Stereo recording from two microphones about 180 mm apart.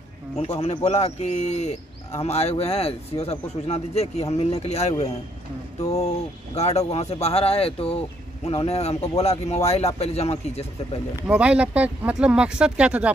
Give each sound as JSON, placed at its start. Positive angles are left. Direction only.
{"t": 0.4, "sound": "speech", "side_deg": 35}
{"t": 11.2, "sound": "speech", "side_deg": -5}